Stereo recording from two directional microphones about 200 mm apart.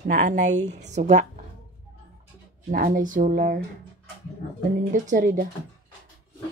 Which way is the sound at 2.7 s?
45° right (ahead or behind).